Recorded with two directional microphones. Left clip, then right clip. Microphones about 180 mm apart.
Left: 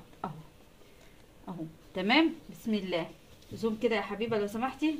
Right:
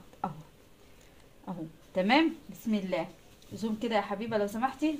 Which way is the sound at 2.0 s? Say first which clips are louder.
Right 1 dB; 30° right (ahead or behind).